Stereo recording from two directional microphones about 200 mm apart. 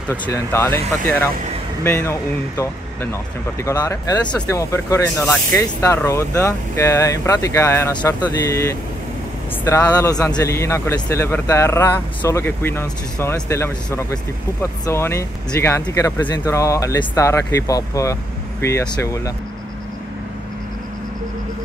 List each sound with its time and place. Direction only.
0.1 s speech: 15° left (ahead or behind)